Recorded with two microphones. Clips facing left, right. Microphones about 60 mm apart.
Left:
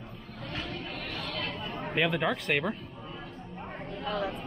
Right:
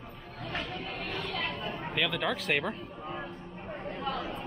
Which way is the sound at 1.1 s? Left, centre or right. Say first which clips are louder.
Right 2 dB; centre.